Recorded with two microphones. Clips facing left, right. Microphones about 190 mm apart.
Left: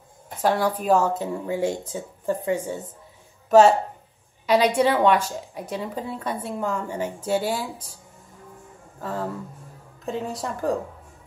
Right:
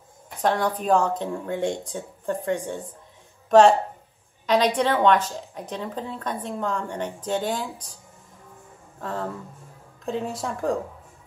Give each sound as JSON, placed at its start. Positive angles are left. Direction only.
{"t": 0.4, "sound": "a woman's voice", "side_deg": 5}
{"t": 9.0, "sound": "a woman's voice", "side_deg": 0}